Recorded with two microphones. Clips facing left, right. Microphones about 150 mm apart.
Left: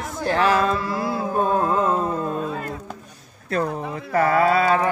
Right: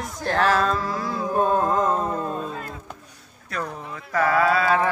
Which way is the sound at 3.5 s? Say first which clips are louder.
Left 7 dB; 30° left (ahead or behind).